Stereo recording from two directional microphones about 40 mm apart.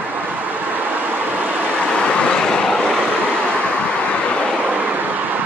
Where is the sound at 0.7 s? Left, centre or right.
Right.